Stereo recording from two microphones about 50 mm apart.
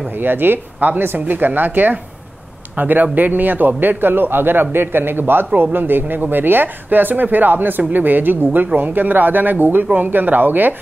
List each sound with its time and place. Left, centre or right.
0.2 s a man's voice: right